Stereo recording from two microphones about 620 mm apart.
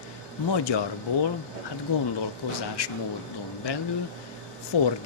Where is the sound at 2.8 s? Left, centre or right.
Left.